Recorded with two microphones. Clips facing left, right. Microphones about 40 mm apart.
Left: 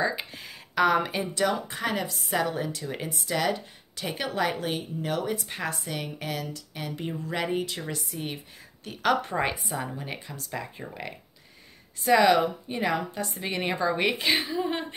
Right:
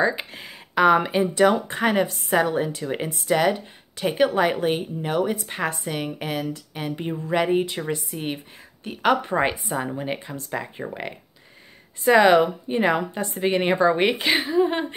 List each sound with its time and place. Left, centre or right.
0.0 s speech: centre
1.2 s speech: right
2.0 s speech: right
2.3 s a woman's voice: right